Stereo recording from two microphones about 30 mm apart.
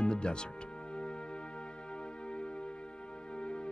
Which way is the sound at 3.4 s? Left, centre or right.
Left.